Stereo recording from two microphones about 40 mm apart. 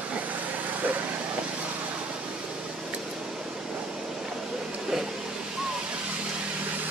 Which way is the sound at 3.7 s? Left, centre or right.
Centre.